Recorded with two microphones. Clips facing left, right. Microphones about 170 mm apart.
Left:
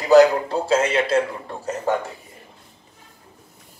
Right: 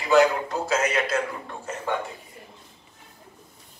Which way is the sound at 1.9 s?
40° left (ahead or behind).